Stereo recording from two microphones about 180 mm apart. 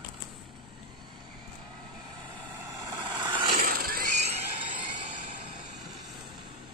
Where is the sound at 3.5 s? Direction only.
55° right (ahead or behind).